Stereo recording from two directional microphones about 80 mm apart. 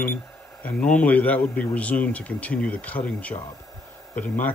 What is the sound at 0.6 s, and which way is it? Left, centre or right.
Speech, centre.